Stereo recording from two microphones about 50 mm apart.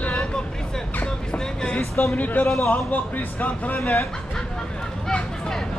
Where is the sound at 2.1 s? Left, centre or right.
Left.